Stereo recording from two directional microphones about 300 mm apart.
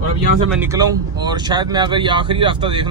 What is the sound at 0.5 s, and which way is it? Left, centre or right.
Speech, centre.